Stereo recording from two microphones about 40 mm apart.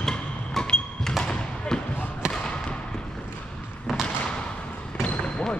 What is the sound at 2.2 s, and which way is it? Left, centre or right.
Basketball bounce, right.